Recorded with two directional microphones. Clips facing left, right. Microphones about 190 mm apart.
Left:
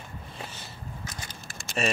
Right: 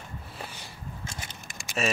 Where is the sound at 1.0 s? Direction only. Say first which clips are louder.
Even; 25° right (ahead or behind).